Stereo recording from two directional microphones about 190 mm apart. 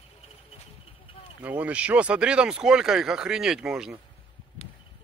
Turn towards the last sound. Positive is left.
turn(degrees=-5)  # may be behind; listen again after turning